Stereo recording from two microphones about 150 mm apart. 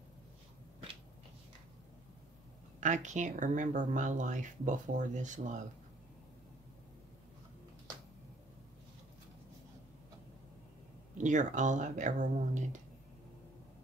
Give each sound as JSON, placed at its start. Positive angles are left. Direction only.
{"t": 2.8, "sound": "speech", "side_deg": -55}
{"t": 11.1, "sound": "speech", "side_deg": -55}